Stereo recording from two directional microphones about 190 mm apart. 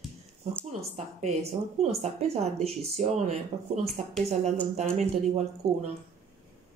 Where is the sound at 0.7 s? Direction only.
35° right (ahead or behind).